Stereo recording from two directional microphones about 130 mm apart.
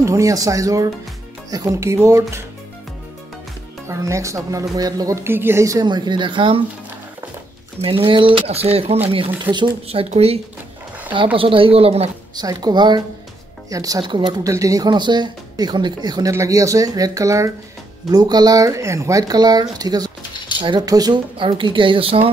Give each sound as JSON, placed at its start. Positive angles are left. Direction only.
{"t": 0.0, "sound": "speech", "side_deg": -25}
{"t": 3.8, "sound": "speech", "side_deg": -20}
{"t": 5.9, "sound": "speech", "side_deg": -35}
{"t": 7.8, "sound": "speech", "side_deg": -45}
{"t": 9.4, "sound": "speech", "side_deg": -35}
{"t": 9.8, "sound": "speech", "side_deg": -50}
{"t": 12.4, "sound": "speech", "side_deg": -30}